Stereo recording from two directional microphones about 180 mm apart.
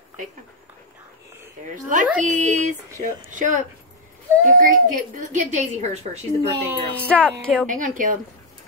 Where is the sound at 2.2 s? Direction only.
40° right (ahead or behind).